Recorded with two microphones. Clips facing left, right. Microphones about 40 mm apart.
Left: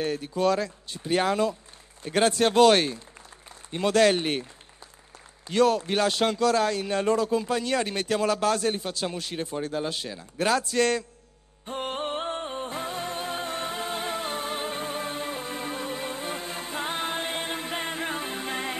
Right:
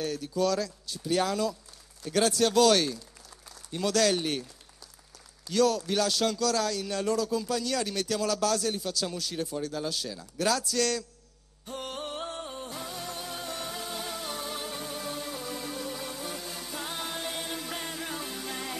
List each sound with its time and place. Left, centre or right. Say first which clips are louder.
0.0 s speech: left 3 dB; left
5.5 s speech: left 3 dB; left
11.6 s music: left 6 dB; left